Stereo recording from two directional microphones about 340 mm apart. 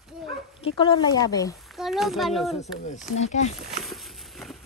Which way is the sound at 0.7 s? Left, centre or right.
Centre.